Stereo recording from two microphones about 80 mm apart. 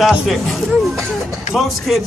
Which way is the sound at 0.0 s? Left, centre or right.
Centre.